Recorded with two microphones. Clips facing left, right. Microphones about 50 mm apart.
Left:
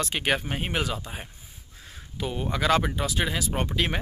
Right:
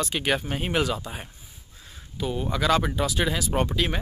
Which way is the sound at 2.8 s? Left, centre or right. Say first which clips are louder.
Right 2 dB; centre.